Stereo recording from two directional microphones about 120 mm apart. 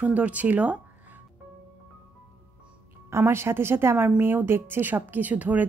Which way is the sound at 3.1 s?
20° right (ahead or behind).